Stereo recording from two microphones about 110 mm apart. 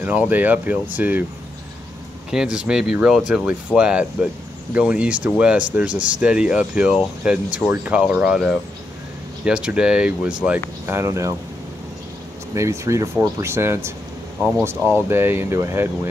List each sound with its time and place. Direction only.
0.0 s speech: 15° right (ahead or behind)
2.3 s speech: 10° right (ahead or behind)
10.9 s speech: 25° right (ahead or behind)
12.5 s speech: 25° right (ahead or behind)